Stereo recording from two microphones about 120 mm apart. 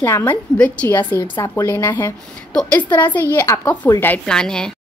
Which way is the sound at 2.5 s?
10° left (ahead or behind).